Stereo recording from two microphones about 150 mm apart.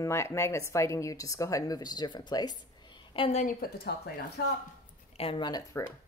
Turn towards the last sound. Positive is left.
turn(degrees=25)  # may be behind; listen again after turning